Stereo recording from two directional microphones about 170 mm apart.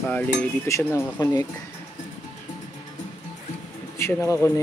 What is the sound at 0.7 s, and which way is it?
Speech, 15° left (ahead or behind).